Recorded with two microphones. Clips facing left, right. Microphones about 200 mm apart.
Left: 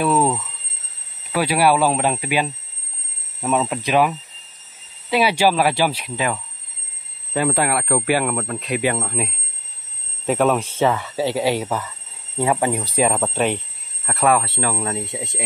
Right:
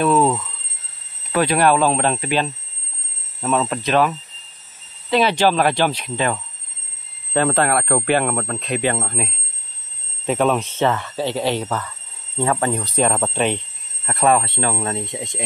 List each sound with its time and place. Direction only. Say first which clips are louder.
0.0 s a sound: right 2 dB; 10° left (ahead or behind)
1.3 s speech: right 1 dB; 10° left (ahead or behind)
5.1 s speech: right 1 dB; 10° left (ahead or behind)
8.3 s speech: right 1 dB; 40° right (ahead or behind)
8.5 s speech: even; 10° left (ahead or behind)
15.0 s speech: even; 10° left (ahead or behind)